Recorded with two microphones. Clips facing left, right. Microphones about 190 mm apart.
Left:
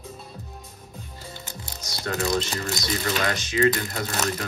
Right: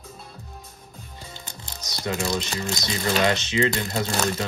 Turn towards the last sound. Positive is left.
turn(degrees=-25)  # may be behind; listen again after turning